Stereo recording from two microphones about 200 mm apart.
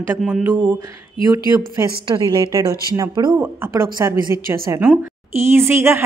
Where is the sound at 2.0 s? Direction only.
20° right (ahead or behind).